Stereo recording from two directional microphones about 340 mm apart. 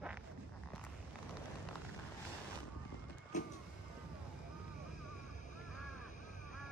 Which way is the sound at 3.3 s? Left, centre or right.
Left.